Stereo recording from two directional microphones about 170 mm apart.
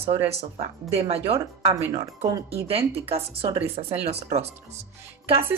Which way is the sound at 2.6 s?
35° right (ahead or behind).